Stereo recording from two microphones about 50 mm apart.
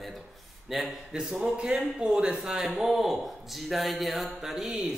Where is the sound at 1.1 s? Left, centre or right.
Centre.